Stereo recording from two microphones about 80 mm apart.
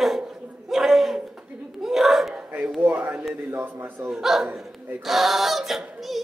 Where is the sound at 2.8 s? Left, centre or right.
Right.